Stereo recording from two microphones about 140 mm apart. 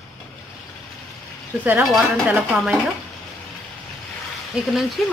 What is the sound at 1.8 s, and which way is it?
Speech, centre (ahead or behind).